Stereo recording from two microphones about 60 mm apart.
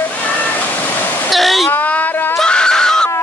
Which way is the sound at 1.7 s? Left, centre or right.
Left.